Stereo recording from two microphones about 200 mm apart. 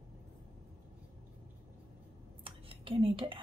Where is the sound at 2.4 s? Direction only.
25° right (ahead or behind).